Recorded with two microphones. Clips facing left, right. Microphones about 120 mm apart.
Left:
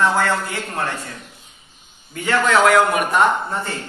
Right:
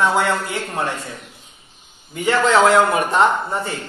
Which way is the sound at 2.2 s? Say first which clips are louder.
Right 1 dB; 20° right (ahead or behind).